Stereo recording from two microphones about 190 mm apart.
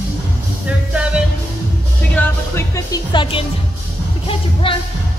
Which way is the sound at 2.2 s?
10° left (ahead or behind).